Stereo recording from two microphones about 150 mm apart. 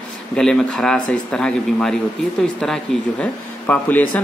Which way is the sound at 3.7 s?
10° left (ahead or behind).